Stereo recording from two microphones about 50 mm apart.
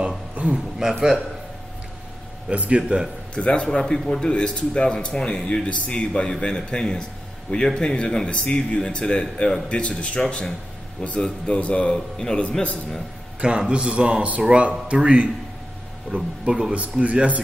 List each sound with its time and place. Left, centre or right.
0.8 s speech: centre
2.5 s speech: right
3.3 s a man's voice: centre
13.4 s speech: right
16.4 s speech: centre
16.7 s speech: right